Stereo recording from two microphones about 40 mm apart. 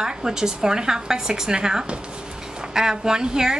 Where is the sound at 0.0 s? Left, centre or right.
Centre.